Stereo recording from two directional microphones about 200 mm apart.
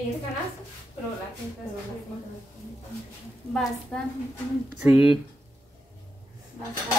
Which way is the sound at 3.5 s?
Centre (ahead or behind).